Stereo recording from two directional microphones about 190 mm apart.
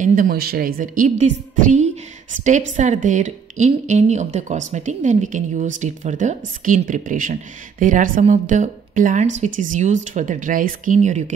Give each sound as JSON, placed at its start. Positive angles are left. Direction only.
{"t": 0.0, "sound": "a woman's voice", "side_deg": -45}